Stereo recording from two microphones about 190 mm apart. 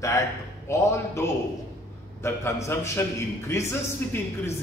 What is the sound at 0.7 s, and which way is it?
A man's voice, 15° left (ahead or behind).